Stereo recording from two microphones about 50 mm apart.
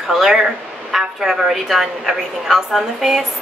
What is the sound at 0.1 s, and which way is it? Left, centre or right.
A woman's voice, centre.